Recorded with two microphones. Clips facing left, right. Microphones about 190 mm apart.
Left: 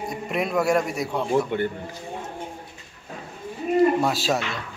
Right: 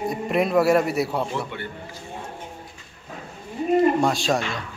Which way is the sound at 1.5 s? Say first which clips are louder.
Left 9 dB; 50° left (ahead or behind).